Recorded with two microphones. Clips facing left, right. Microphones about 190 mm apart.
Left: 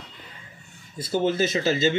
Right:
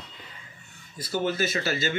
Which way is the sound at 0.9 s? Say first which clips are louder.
Left 4 dB; 25° left (ahead or behind).